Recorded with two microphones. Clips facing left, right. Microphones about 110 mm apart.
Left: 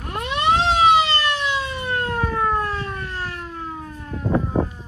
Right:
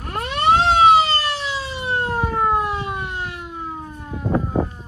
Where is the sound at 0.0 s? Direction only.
45° right (ahead or behind).